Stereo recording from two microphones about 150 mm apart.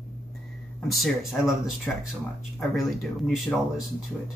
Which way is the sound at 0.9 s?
Centre (ahead or behind).